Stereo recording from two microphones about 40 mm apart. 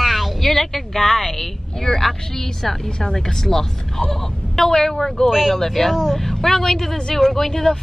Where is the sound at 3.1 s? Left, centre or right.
Centre.